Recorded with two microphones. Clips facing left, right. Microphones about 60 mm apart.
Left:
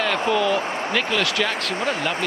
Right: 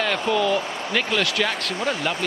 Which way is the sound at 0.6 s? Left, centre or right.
Left.